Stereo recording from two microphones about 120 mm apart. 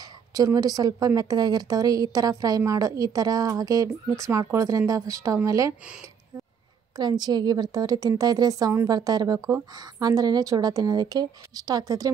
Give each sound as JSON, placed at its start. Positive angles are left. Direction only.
{"t": 0.3, "sound": "a woman's voice", "side_deg": -30}
{"t": 7.0, "sound": "a woman's voice", "side_deg": -35}